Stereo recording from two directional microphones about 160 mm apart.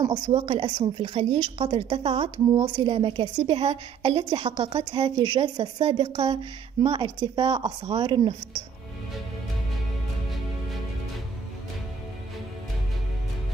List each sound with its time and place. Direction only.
0.0 s a woman's voice: 30° right (ahead or behind)